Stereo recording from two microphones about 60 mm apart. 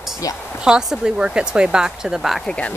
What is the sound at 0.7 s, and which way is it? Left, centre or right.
Speech, centre.